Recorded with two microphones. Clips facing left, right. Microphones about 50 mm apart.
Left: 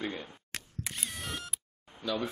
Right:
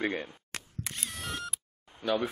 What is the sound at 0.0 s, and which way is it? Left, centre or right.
Speech, right.